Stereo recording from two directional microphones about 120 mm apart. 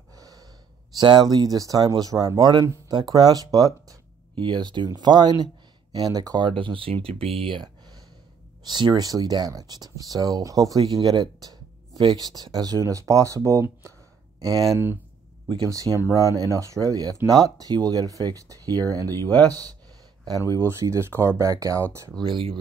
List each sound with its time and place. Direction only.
0.1 s gasp: 30° right (ahead or behind)
0.9 s speech: 35° right (ahead or behind)
16.0 s speech: 25° left (ahead or behind)
16.5 s speech: 25° right (ahead or behind)
19.1 s speech: 15° left (ahead or behind)
20.2 s speech: 30° right (ahead or behind)
22.2 s speech: 45° right (ahead or behind)